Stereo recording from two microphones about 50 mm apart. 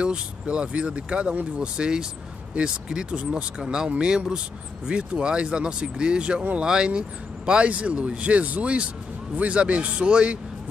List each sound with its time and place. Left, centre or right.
0.0 s speech: right